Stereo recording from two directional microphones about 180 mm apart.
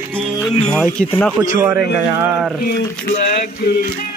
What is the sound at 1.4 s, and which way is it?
Speech, 15° right (ahead or behind).